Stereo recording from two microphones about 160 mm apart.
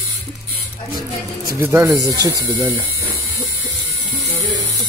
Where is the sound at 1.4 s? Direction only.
15° right (ahead or behind).